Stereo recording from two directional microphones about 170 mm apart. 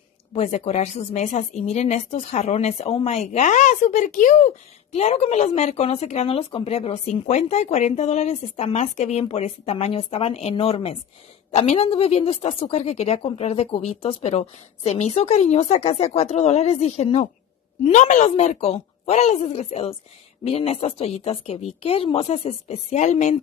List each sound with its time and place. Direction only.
0.3 s a woman's voice: 40° left (ahead or behind)